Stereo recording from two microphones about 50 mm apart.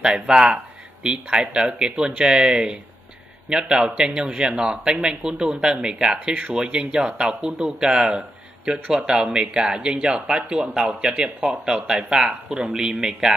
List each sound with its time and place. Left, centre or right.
0.0 s speech: centre